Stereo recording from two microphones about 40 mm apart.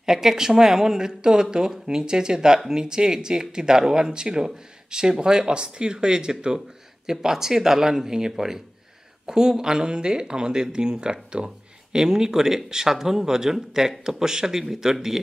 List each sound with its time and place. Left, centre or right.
0.0 s speech: centre